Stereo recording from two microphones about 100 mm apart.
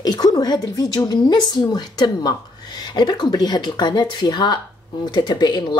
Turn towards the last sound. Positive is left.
turn(degrees=50)  # may be behind; listen again after turning